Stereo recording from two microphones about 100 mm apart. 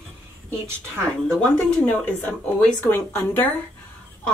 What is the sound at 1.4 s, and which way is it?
Speech, 10° left (ahead or behind).